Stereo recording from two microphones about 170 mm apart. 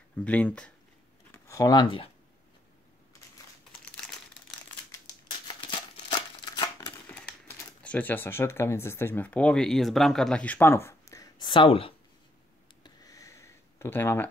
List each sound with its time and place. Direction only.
0.1 s speech: 10° left (ahead or behind)
1.3 s speech: 20° left (ahead or behind)
3.8 s crumpling: 5° left (ahead or behind)
5.5 s a sound: 25° left (ahead or behind)
7.1 s speech: 10° left (ahead or behind); by 11.9 s 30° left (ahead or behind)
12.8 s a sound: 20° left (ahead or behind)